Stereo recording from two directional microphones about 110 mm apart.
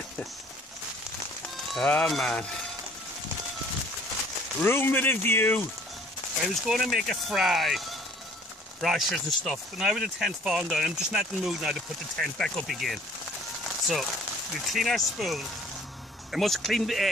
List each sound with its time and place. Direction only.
1.9 s speech: 5° left (ahead or behind)
4.6 s speech: 20° left (ahead or behind)
6.5 s speech: centre (ahead or behind)
8.8 s speech: centre (ahead or behind)
14.7 s speech: centre (ahead or behind)